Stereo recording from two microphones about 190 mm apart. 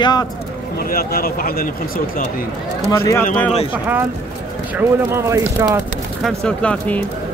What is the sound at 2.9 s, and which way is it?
Speech, 15° left (ahead or behind).